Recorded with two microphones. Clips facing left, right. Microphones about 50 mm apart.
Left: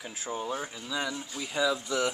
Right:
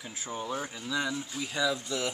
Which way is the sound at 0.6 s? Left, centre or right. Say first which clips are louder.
Right 1 dB; centre.